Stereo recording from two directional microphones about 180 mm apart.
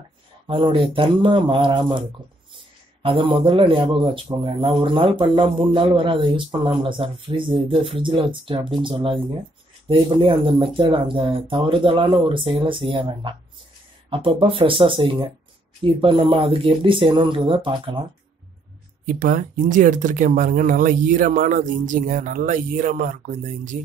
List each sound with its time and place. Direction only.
0.5 s speech: 30° right (ahead or behind)
19.0 s speech: 50° right (ahead or behind)